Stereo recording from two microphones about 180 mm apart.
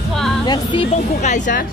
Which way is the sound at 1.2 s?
40° left (ahead or behind).